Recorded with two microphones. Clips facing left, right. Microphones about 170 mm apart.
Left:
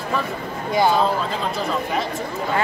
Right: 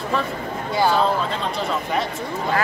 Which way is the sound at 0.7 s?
15° left (ahead or behind).